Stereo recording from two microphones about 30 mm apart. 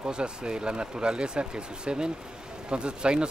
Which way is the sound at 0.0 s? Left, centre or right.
Right.